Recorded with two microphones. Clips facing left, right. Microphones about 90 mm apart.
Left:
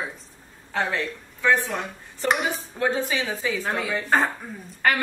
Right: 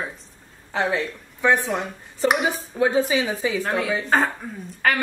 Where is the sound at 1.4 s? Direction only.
20° right (ahead or behind).